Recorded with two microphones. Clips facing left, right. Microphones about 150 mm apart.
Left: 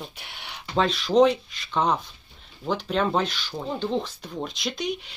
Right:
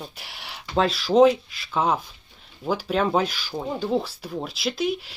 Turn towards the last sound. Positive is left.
turn(degrees=-5)  # may be behind; listen again after turning